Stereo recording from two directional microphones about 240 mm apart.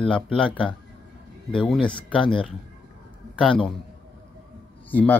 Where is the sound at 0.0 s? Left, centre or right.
Centre.